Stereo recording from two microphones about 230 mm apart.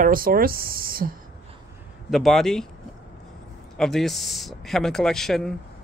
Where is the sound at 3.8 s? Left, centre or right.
Centre.